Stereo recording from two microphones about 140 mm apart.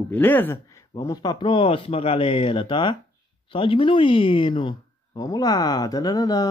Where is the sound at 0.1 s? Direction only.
15° left (ahead or behind).